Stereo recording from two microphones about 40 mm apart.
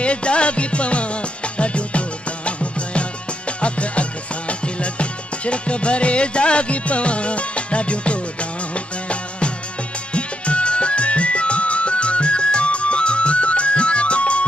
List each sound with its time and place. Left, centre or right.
0.0 s music: left